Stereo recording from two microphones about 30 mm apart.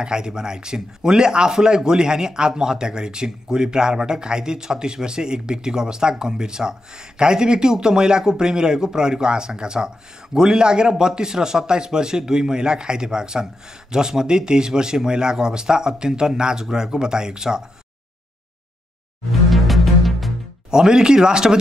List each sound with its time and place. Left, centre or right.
0.0 s speech: right
19.5 s music: centre
20.7 s speech: right